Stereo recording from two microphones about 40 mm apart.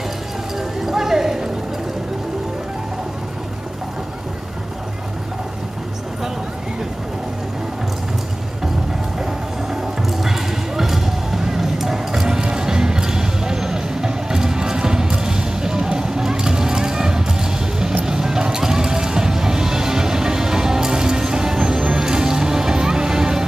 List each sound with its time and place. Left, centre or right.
0.8 s clip-clop: centre
10.2 s clip-clop: centre
18.0 s music: centre